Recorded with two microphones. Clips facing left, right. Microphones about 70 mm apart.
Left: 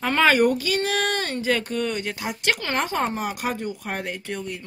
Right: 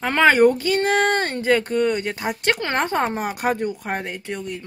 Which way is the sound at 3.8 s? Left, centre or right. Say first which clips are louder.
Right 3 dB; right.